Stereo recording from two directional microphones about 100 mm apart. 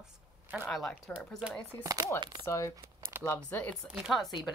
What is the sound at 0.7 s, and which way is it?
Speech, 5° left (ahead or behind).